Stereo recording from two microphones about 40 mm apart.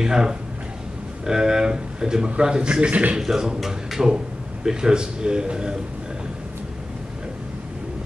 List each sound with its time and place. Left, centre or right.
0.0 s a man's voice: centre; by 3.2 s right
3.2 s a man's voice: centre
4.6 s a man's voice: right